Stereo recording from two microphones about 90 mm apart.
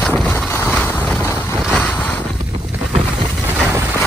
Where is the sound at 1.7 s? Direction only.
15° left (ahead or behind).